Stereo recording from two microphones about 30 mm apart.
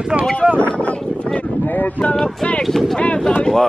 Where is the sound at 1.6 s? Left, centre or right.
Left.